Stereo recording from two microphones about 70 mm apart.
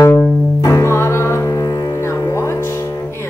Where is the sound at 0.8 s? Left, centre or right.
Left.